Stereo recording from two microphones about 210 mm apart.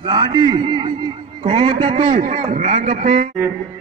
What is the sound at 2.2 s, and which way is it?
Speech, 35° right (ahead or behind).